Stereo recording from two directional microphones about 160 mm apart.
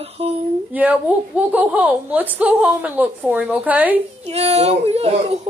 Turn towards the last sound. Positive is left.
turn(degrees=-40)  # may be behind; listen again after turning